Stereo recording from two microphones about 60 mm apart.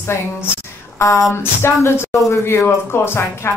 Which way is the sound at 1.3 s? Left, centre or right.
Left.